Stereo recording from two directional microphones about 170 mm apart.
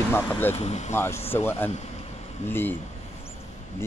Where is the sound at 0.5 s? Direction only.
40° left (ahead or behind).